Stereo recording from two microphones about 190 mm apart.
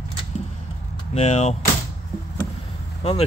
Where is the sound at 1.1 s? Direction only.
35° left (ahead or behind).